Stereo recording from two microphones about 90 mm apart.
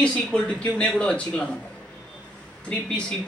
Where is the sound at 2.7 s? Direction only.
10° left (ahead or behind).